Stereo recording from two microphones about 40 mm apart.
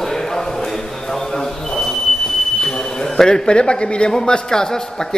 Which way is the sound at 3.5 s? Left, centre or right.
Left.